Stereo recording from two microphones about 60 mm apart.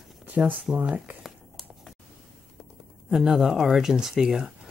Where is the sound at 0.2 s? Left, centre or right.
Right.